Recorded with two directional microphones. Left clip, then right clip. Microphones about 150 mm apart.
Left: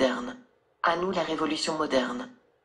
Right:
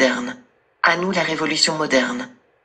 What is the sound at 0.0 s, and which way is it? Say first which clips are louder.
A man's voice: right 8 dB; 20° right (ahead or behind).